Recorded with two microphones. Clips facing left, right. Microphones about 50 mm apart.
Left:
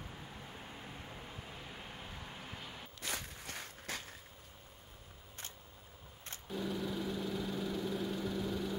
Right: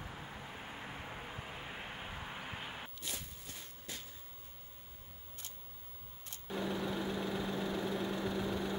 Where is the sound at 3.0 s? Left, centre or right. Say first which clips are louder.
Left 4 dB; left.